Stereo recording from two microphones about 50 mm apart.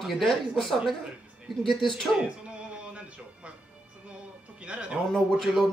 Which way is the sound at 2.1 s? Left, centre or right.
Right.